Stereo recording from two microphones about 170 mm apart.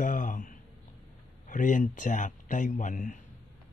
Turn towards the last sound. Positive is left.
turn(degrees=50)  # may be behind; listen again after turning